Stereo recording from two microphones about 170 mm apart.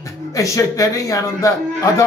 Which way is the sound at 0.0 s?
20° left (ahead or behind).